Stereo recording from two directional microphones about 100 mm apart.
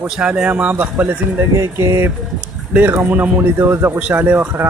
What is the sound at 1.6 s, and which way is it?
A man's voice, 30° right (ahead or behind).